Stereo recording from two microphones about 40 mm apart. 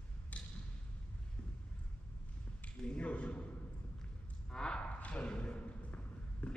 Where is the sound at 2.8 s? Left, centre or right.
Left.